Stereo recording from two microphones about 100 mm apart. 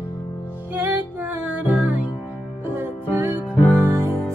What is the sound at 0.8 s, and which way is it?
Music, 15° right (ahead or behind).